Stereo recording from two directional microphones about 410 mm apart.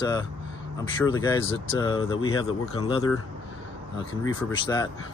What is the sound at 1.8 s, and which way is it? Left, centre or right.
Speech, centre.